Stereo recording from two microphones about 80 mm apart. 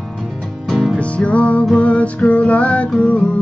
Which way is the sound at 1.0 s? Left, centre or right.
Centre.